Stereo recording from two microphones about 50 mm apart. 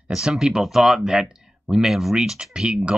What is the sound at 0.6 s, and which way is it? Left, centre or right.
Speech, centre.